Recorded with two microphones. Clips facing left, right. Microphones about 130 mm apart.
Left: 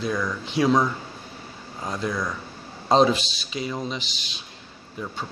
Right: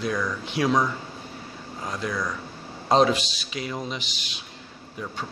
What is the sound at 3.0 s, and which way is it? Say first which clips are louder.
Speech: left 1 dB; 30° left (ahead or behind).